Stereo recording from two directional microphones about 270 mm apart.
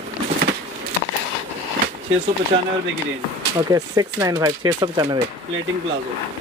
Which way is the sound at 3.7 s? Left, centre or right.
Centre.